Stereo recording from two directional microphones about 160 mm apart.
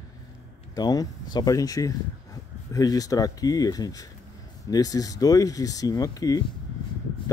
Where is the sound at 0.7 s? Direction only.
25° left (ahead or behind).